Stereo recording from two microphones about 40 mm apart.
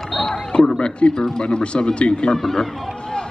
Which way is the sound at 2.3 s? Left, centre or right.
Centre.